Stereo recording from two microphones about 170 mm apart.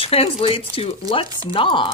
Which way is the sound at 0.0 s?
35° left (ahead or behind).